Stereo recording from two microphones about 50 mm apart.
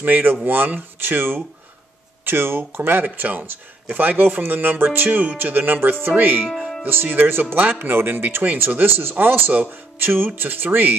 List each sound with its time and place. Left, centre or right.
0.0 s speech: right
5.8 s speech: right
6.4 s speech: centre
7.1 s speech: right
9.5 s speech: right